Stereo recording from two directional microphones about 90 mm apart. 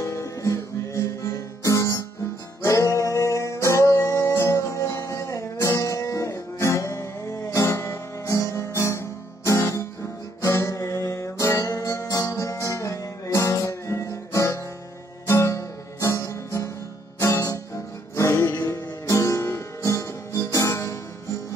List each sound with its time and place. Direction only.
0.0 s music: 35° left (ahead or behind)